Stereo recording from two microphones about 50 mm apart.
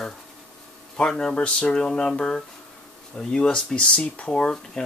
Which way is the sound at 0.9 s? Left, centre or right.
Centre.